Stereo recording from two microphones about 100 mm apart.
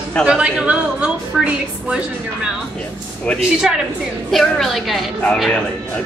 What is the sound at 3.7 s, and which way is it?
A woman's voice, 5° right (ahead or behind).